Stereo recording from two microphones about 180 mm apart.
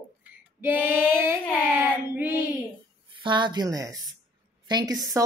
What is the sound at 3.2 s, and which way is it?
Speech, 25° right (ahead or behind).